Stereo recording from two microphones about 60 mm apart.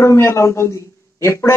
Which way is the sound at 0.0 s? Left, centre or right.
Left.